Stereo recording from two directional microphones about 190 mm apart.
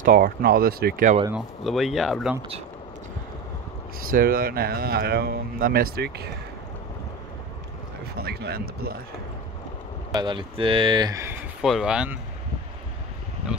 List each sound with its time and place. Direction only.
0.0 s speech: 50° right (ahead or behind)
1.3 s speech: centre (ahead or behind)
4.1 s speech: 50° right (ahead or behind)
8.2 s speech: 55° right (ahead or behind)
10.1 s speech: 25° right (ahead or behind)
11.6 s speech: centre (ahead or behind)